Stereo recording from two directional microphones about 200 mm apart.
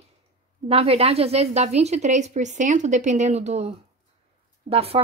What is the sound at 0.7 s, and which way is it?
Speech, 30° right (ahead or behind).